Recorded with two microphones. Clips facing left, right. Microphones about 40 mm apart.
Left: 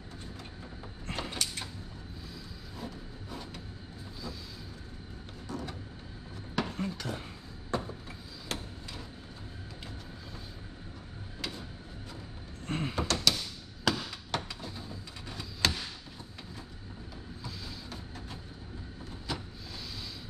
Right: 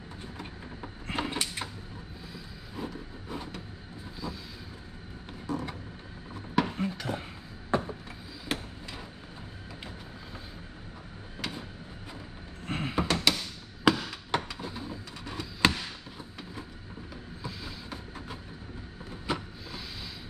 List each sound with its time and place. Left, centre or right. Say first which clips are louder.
1.1 s mechanisms: right 4 dB; right
2.3 s vehicle: right 4 dB; right
5.5 s vehicle: right 5 dB; centre
6.5 s a sound: right 5 dB; centre
12.6 s door: right 3 dB; centre
13.9 s chop: right 6 dB; centre
14.3 s a sound: right 5 dB; centre
17.4 s a sound: right 4 dB; centre
19.3 s vehicle: right 6 dB; right